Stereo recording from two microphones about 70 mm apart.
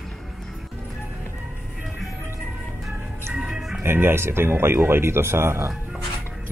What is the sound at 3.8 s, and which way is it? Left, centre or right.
Speech, right.